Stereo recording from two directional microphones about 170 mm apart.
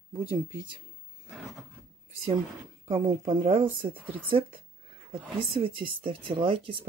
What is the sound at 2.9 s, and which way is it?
Speech, 35° right (ahead or behind).